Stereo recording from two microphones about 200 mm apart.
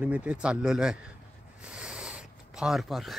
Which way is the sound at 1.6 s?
5° right (ahead or behind).